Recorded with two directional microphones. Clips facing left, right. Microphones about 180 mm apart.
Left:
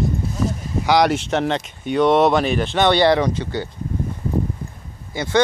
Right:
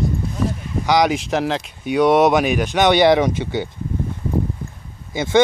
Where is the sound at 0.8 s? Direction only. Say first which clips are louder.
Even; 5° left (ahead or behind); by 3.7 s 20° right (ahead or behind).